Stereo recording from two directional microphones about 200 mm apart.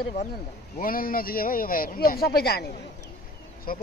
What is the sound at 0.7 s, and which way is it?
Speech, 45° left (ahead or behind).